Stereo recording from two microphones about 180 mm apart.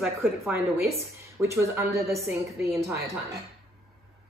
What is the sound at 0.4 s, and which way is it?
Speech, 15° right (ahead or behind).